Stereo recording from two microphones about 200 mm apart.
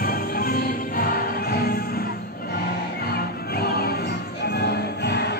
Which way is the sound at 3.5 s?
50° left (ahead or behind).